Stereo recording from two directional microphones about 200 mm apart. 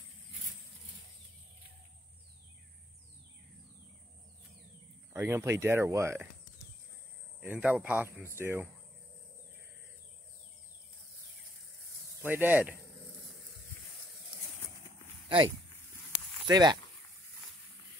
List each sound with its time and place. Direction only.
5.1 s speech: 15° right (ahead or behind)
7.3 s speech: 5° right (ahead or behind)
12.2 s speech: 10° right (ahead or behind)
15.2 s speech: 25° right (ahead or behind)